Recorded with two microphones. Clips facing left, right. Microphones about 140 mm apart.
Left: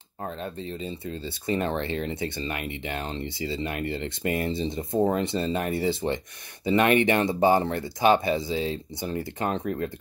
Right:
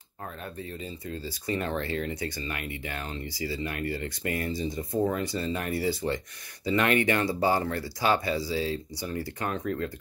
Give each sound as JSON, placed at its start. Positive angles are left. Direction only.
{"t": 0.4, "sound": "speech", "side_deg": 25}